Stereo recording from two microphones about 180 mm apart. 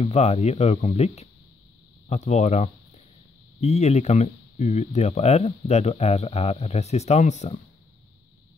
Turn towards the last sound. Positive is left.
turn(degrees=40)  # may be behind; listen again after turning